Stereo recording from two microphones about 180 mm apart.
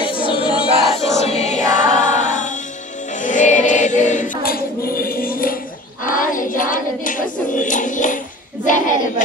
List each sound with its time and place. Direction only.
0.0 s a sound: 30° left (ahead or behind)
0.6 s crowd: centre (ahead or behind)
1.0 s music: 40° left (ahead or behind)
3.2 s choir: 45° left (ahead or behind)
6.0 s child singing: 50° left (ahead or behind)
8.6 s a sound: 45° left (ahead or behind)